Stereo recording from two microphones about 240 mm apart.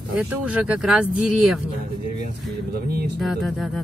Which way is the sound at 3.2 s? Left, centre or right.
Centre.